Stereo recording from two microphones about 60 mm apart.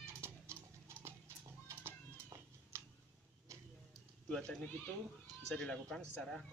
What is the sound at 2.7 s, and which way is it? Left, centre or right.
Tick, right.